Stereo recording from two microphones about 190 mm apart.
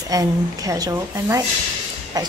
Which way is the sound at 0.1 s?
20° right (ahead or behind).